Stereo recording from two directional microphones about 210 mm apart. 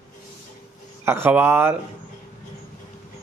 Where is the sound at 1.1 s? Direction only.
10° right (ahead or behind).